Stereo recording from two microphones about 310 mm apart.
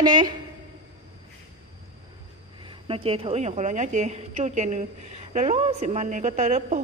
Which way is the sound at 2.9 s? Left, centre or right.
Centre.